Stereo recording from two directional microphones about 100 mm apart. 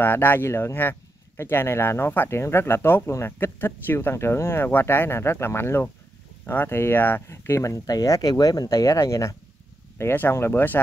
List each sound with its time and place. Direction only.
0.0 s speech: 20° left (ahead or behind)